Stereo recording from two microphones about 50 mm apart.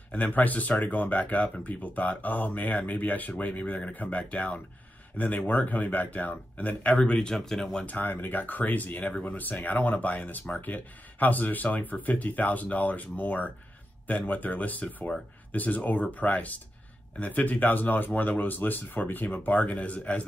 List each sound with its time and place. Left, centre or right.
0.1 s speech: left
7.0 s speech: centre
7.8 s speech: left